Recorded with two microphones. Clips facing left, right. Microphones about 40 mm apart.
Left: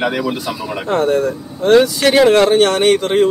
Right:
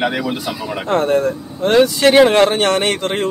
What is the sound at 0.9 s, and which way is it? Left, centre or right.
Speech, right.